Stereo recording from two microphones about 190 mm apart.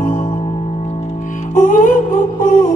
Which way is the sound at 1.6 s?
45° left (ahead or behind).